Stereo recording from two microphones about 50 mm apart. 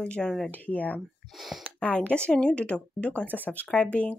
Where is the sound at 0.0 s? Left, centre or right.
Left.